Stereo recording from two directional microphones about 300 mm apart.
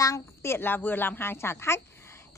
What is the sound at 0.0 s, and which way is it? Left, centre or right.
A woman's voice, centre.